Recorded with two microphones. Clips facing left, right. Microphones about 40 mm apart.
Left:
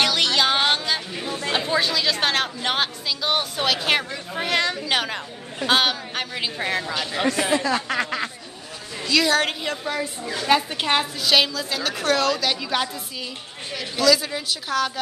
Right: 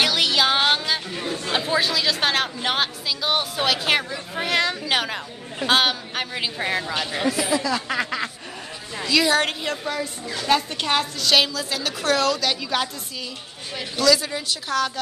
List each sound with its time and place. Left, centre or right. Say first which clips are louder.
0.0 s a sound: even; centre
1.5 s a woman's voice: even; centre
7.4 s speech: left 1 dB; left
7.9 s a woman's voice: even; centre
11.3 s a woman's voice: even; centre
13.9 s a woman's voice: even; centre